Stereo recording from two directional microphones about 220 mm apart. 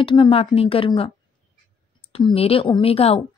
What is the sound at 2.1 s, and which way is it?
A woman's voice, 25° left (ahead or behind).